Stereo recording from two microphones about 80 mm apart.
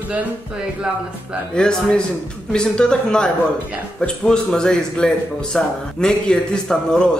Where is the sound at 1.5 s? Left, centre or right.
Centre.